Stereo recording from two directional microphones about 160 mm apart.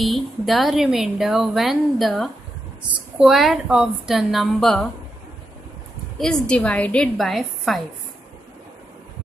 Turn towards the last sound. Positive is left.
turn(degrees=0)  # may be behind; listen again after turning